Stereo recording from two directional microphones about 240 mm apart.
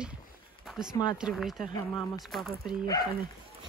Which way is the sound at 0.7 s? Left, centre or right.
Centre.